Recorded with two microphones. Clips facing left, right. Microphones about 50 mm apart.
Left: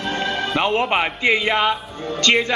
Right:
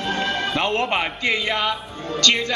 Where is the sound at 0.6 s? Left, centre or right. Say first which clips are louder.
Left 4 dB; centre.